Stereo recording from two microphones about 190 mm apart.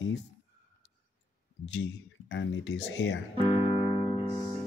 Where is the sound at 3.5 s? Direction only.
30° left (ahead or behind).